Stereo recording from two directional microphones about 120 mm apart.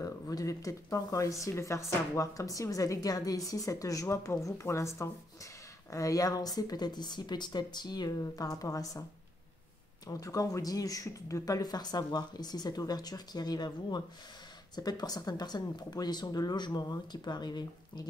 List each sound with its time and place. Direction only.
0.0 s speech: 30° left (ahead or behind)
10.0 s speech: 30° left (ahead or behind)